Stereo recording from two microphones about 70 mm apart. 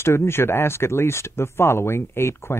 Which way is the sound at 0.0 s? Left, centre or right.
Left.